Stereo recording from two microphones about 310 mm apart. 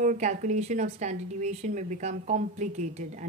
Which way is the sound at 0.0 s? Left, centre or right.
Right.